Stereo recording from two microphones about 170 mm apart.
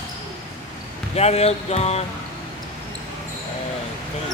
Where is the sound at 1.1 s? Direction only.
40° left (ahead or behind).